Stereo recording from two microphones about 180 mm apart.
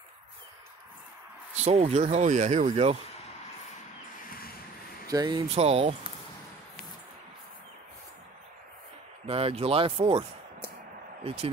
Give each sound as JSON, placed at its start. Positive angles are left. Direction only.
{"t": 1.5, "sound": "speech", "side_deg": -35}
{"t": 5.0, "sound": "speech", "side_deg": -20}
{"t": 5.5, "sound": "speech", "side_deg": -35}
{"t": 9.3, "sound": "speech", "side_deg": -30}
{"t": 11.2, "sound": "speech", "side_deg": -35}